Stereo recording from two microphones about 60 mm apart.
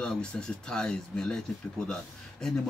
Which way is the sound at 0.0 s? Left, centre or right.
Centre.